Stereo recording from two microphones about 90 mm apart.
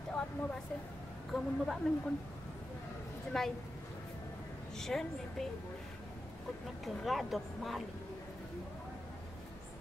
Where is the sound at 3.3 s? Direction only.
5° left (ahead or behind).